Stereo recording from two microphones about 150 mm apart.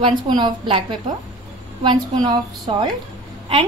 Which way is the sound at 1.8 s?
30° right (ahead or behind).